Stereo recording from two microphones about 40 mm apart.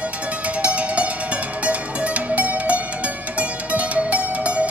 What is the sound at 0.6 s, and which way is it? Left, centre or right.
Music, right.